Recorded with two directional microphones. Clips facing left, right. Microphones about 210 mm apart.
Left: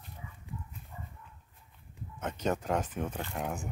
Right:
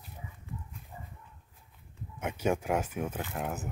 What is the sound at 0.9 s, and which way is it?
Dog, 30° right (ahead or behind).